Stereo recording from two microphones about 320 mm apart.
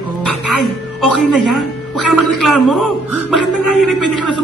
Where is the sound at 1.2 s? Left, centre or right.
Centre.